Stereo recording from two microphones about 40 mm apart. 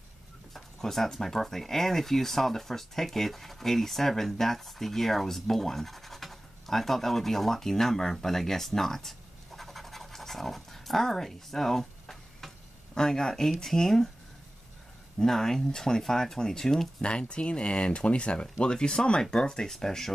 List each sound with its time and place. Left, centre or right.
0.7 s speech: centre
9.6 s scratch: centre
12.9 s speech: centre
15.1 s speech: centre
17.0 s speech: left